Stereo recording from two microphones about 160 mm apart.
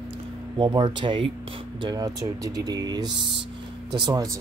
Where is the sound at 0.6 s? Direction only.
30° right (ahead or behind).